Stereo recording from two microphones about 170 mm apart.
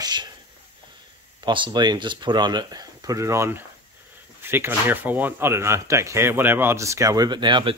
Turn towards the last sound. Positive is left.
turn(degrees=-30)  # may be behind; listen again after turning